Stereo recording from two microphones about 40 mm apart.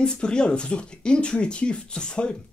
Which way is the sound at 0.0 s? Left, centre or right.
Left.